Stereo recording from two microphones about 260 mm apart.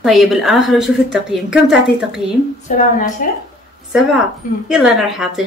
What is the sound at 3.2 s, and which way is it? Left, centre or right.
Speech, left.